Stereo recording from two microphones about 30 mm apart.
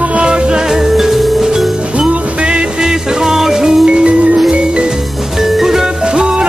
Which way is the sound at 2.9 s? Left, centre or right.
Centre.